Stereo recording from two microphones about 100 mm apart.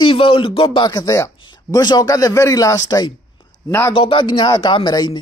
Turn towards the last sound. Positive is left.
turn(degrees=45)  # may be behind; listen again after turning